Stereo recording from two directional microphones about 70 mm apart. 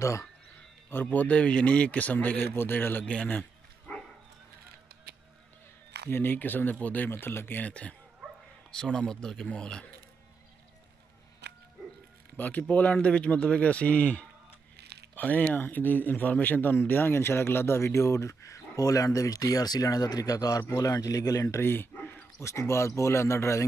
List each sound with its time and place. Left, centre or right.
0.0 s speech: left
1.1 s speech: centre
3.1 s speech: centre
3.9 s dog: left
6.0 s speech: left; by 9.8 s centre
11.8 s music: centre
12.4 s a man's voice: left
21.5 s speech: left
22.4 s speech: left